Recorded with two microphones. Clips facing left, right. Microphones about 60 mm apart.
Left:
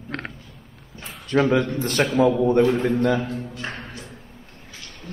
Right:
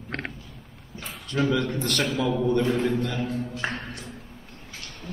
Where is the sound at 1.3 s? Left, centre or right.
Left.